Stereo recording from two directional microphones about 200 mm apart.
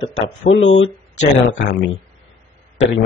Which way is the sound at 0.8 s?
35° left (ahead or behind).